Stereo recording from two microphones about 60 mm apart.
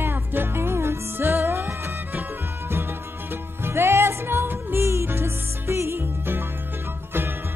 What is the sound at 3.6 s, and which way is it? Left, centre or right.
Music, right.